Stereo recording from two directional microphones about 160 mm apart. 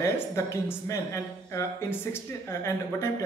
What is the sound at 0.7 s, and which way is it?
Speech, 20° left (ahead or behind).